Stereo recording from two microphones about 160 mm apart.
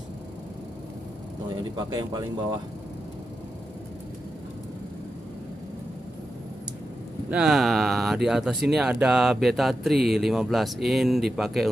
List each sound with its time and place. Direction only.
1.5 s speech: 25° right (ahead or behind)
7.2 s speech: 5° right (ahead or behind)